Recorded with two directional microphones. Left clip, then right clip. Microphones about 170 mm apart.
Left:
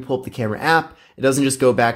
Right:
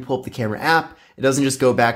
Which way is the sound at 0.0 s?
15° left (ahead or behind).